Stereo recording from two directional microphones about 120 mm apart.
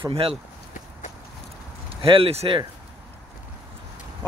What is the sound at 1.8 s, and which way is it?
Speech, 50° right (ahead or behind).